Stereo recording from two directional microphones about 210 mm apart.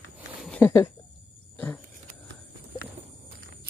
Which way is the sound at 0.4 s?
5° left (ahead or behind).